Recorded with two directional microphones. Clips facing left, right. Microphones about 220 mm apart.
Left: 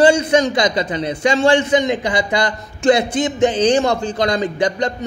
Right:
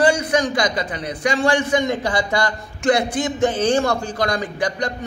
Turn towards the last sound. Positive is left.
turn(degrees=25)  # may be behind; listen again after turning